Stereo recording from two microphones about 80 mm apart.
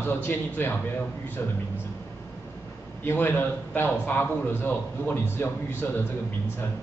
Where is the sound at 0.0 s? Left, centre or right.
Left.